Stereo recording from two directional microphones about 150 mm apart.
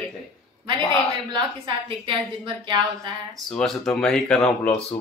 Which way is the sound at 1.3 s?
30° right (ahead or behind).